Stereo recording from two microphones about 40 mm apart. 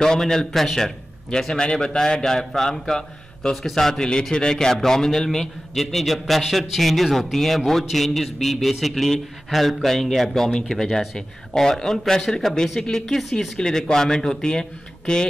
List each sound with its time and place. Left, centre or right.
0.0 s a man's voice: centre
1.5 s a man's voice: centre
4.0 s a man's voice: centre
13.2 s speech: centre
13.6 s a man's voice: centre